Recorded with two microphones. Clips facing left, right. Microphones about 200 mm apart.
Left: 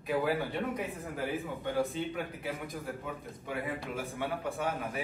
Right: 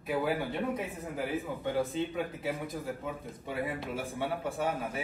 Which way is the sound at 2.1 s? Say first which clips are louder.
Right 3 dB; 20° right (ahead or behind).